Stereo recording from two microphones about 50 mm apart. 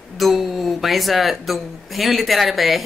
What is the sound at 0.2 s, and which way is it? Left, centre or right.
A woman's voice, centre.